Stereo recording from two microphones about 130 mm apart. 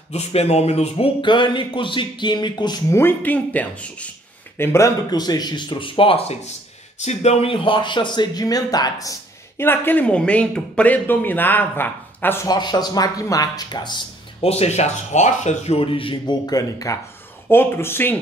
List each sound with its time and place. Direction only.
0.1 s speech: 55° left (ahead or behind); by 2.8 s 35° left (ahead or behind)
2.9 s speech: 15° left (ahead or behind)
4.6 s speech: 20° left (ahead or behind)
9.6 s speech: 15° left (ahead or behind)
12.4 s speech: 30° left (ahead or behind)
14.4 s speech: 55° left (ahead or behind); by 18.1 s 15° left (ahead or behind)